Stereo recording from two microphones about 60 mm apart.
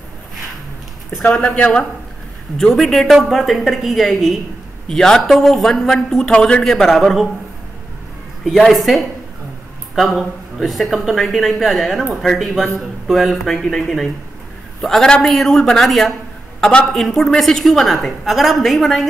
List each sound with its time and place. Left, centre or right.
1.5 s a man's voice: centre
2.5 s a woman's voice: centre
8.5 s a woman's voice: centre